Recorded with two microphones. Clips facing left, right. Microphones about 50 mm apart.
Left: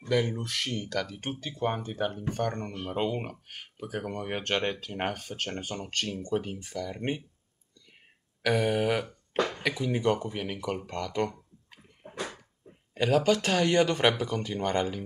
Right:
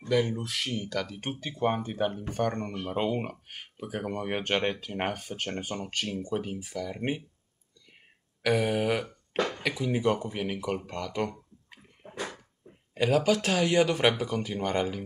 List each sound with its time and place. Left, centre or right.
0.1 s speech: centre
1.3 s speech: right
8.4 s speech: centre
12.9 s speech: centre